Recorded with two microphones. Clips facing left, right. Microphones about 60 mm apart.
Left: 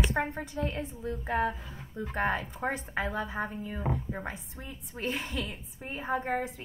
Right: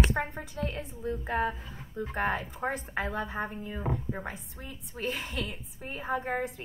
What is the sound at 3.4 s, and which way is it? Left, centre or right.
Speech, centre.